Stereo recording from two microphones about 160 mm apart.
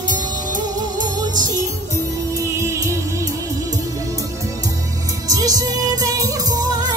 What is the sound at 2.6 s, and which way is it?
Music, 20° right (ahead or behind).